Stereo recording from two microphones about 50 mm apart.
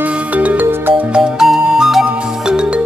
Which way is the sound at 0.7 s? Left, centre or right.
Right.